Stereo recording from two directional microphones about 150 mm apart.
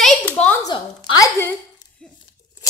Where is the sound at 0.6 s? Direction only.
25° left (ahead or behind).